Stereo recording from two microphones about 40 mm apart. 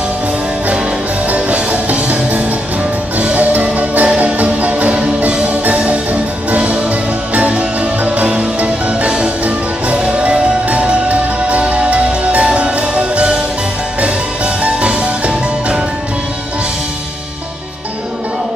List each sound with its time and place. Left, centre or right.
1.2 s music: right
6.5 s music: right